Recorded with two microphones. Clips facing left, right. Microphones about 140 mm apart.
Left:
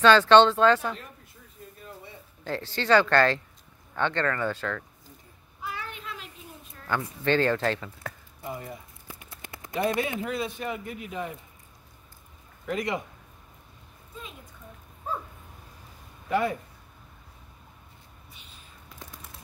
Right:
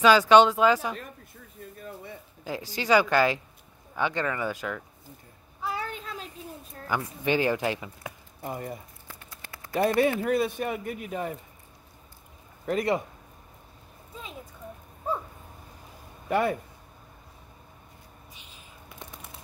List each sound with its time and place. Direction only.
0.0 s speech: 10° right (ahead or behind)
2.4 s speech: 10° right (ahead or behind)
5.6 s a sound: 35° right (ahead or behind)
6.9 s speech: 10° right (ahead or behind)
8.4 s speech: 50° right (ahead or behind)
9.3 s a sound: 20° left (ahead or behind)
10.2 s speech: 55° right (ahead or behind)
12.6 s speech: 40° right (ahead or behind)
16.3 s speech: 50° right (ahead or behind)